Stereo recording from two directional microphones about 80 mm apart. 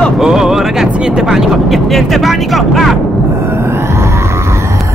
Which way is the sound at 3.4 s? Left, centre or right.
Right.